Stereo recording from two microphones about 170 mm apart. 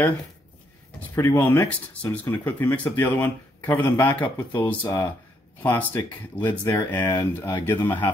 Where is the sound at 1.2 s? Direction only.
20° left (ahead or behind).